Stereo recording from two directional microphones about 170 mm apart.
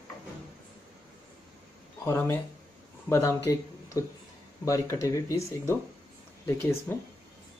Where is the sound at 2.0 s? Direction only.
15° left (ahead or behind).